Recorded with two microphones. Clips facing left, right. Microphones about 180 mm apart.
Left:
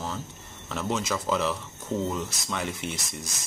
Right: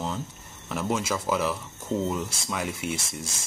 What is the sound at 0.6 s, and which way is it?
Speech, 10° right (ahead or behind).